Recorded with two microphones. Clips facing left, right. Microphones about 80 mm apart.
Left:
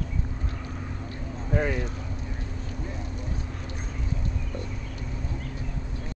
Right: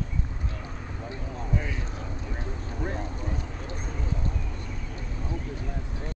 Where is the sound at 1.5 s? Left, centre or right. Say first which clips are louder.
Left 7 dB; left.